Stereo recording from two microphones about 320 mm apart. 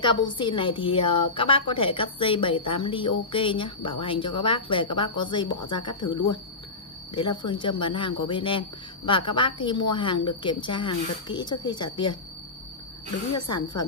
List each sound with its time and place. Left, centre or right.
0.4 s a woman's voice: centre
13.5 s a woman's voice: centre